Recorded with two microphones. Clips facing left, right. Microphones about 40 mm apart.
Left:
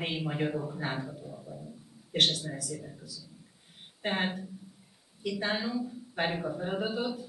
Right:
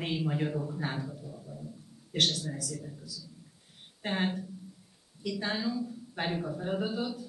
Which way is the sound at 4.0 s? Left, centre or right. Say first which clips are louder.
Left 1 dB; centre.